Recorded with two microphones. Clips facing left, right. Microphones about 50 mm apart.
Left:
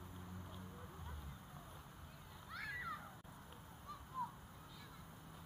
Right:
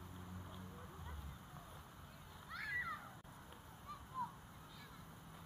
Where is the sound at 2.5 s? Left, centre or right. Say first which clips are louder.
Right 3 dB; centre.